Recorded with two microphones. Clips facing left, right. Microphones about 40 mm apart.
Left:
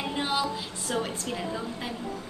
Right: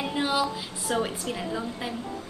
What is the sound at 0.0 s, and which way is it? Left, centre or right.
A woman's voice, centre.